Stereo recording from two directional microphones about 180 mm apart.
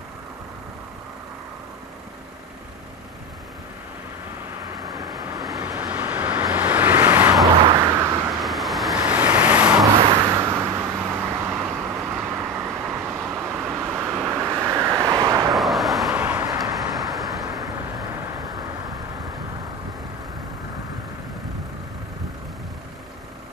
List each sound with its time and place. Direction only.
4.8 s vehicle: 20° right (ahead or behind)
5.4 s vehicle: centre (ahead or behind)
7.6 s vehicle: 30° right (ahead or behind)
8.4 s vehicle: centre (ahead or behind); by 15.5 s 20° right (ahead or behind)
15.5 s vehicle: centre (ahead or behind)
16.4 s vehicle: 20° right (ahead or behind)
16.9 s vehicle: centre (ahead or behind)